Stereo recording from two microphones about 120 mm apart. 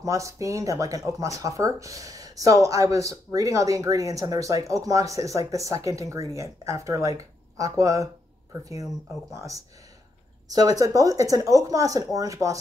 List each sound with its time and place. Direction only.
0.0 s speech: 25° right (ahead or behind)
9.3 s speech: 25° right (ahead or behind)